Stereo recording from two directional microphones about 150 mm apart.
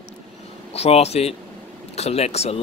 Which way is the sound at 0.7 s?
45° left (ahead or behind).